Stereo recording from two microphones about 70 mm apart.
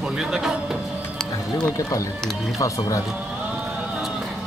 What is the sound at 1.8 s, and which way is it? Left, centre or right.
Music, left.